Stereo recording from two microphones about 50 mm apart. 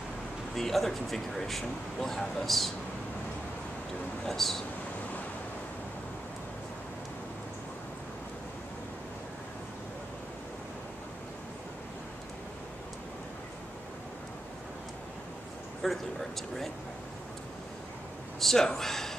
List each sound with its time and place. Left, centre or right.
0.6 s speech: centre
4.3 s speech: centre
15.8 s speech: centre
18.4 s speech: centre